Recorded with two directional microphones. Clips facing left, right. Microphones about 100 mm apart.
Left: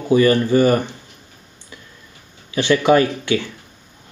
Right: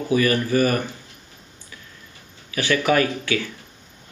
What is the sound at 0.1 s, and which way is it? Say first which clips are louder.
Speech: left 6 dB; 25° left (ahead or behind).